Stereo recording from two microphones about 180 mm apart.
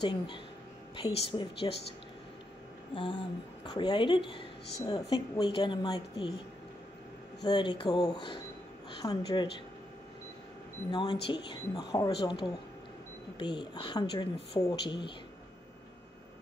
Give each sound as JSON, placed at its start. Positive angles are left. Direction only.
{"t": 0.0, "sound": "a woman's voice", "side_deg": 25}
{"t": 2.9, "sound": "a sound", "side_deg": 25}
{"t": 3.6, "sound": "a woman's voice", "side_deg": 25}
{"t": 7.4, "sound": "a woman's voice", "side_deg": 25}
{"t": 10.9, "sound": "a woman's voice", "side_deg": 25}